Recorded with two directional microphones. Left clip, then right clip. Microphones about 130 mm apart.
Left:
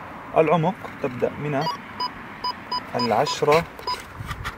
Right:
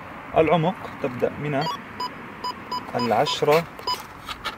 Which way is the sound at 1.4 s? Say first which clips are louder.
Even; centre (ahead or behind).